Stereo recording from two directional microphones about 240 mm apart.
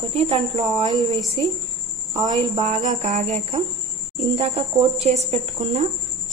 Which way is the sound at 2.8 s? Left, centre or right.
Right.